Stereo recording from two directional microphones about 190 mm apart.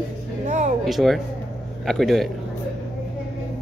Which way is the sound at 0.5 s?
40° right (ahead or behind).